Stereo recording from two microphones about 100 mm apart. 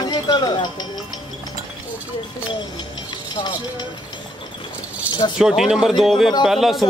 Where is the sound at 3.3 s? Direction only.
45° left (ahead or behind).